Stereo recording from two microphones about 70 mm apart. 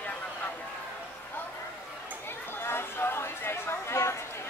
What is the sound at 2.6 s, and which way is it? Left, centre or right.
Chatter, left.